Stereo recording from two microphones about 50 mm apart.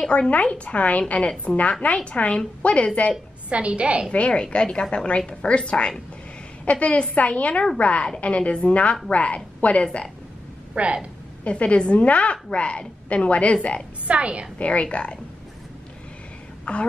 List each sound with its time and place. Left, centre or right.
0.0 s a woman's voice: centre
3.4 s a woman's voice: right
4.3 s a woman's voice: centre
10.7 s speech: centre
11.4 s a woman's voice: left
14.0 s a woman's voice: right
14.6 s a woman's voice: left
16.7 s a woman's voice: left